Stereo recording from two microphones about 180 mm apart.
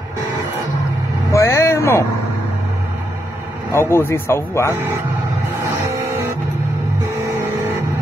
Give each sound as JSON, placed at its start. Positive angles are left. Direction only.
{"t": 1.3, "sound": "vehicle", "side_deg": 15}
{"t": 3.7, "sound": "speech", "side_deg": 15}